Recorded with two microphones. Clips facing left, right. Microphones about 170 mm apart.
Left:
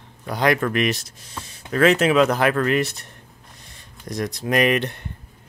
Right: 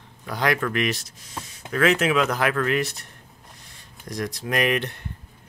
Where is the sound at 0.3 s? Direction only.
25° left (ahead or behind).